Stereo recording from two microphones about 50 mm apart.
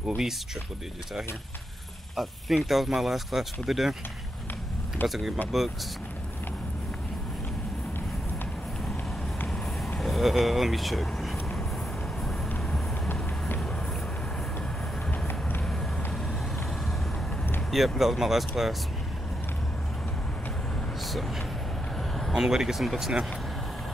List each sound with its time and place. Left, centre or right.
2.1 s speech: centre
5.0 s speech: centre
9.5 s vehicle: centre
15.0 s vehicle: left
17.6 s speech: centre
21.0 s vehicle: centre
22.3 s speech: centre